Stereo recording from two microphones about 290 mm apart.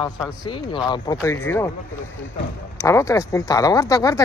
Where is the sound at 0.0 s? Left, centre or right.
Centre.